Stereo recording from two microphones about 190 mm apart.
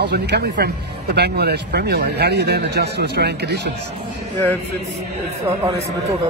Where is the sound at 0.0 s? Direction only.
60° right (ahead or behind).